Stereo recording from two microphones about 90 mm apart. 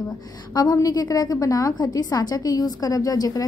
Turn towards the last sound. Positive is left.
turn(degrees=45)  # may be behind; listen again after turning